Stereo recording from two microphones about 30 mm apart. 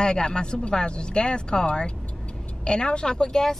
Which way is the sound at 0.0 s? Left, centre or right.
Left.